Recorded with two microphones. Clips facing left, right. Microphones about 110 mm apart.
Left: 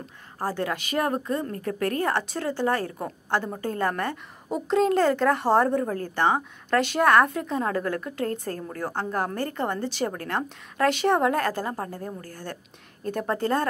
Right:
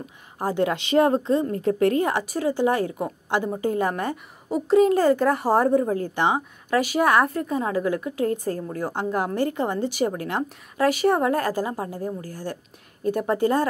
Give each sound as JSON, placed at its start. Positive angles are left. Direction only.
{"t": 0.4, "sound": "a woman's voice", "side_deg": -20}